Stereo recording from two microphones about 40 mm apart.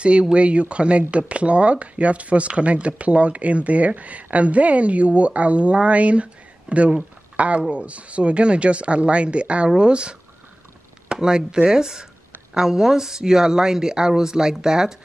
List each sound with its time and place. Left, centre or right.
0.0 s a woman's voice: right